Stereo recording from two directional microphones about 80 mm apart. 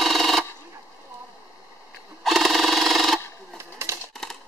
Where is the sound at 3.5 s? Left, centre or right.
Right.